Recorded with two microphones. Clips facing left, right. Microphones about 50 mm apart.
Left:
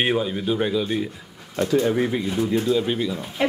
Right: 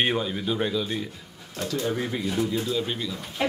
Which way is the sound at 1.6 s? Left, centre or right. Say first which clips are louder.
Left 8 dB; left.